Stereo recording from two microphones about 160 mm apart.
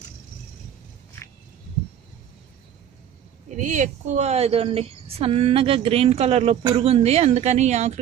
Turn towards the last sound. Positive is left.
turn(degrees=-45)  # may be behind; listen again after turning